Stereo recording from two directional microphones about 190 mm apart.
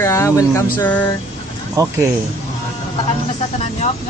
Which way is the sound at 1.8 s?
15° right (ahead or behind).